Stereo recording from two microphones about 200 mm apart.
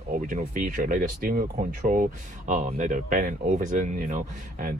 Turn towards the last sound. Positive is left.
turn(degrees=-45)  # may be behind; listen again after turning